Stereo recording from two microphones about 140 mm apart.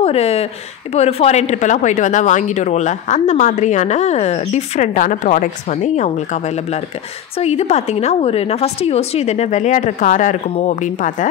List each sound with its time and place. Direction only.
0.0 s a woman's voice: 50° left (ahead or behind); by 11.2 s 65° left (ahead or behind)